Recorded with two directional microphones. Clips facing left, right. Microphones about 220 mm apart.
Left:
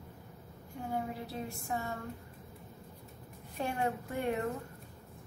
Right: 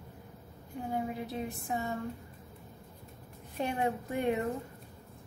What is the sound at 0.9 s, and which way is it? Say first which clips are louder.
Speech: right 3 dB; 20° right (ahead or behind).